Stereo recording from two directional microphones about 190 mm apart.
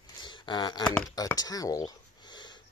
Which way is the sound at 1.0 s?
20° left (ahead or behind).